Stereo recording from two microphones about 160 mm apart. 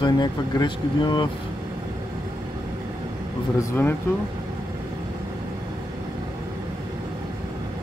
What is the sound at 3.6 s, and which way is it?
Speech, 15° left (ahead or behind).